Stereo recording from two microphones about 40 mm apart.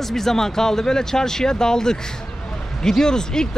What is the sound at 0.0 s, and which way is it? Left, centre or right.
Speech, centre.